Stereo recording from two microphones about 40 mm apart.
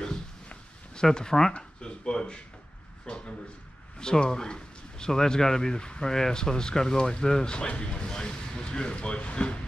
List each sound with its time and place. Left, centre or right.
0.9 s speech: centre
1.5 s a sound: left
4.0 s speech: centre